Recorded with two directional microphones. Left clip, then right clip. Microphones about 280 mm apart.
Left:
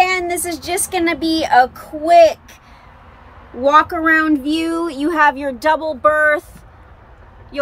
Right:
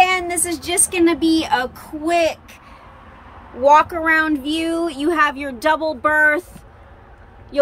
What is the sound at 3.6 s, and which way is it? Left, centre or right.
Speech, centre.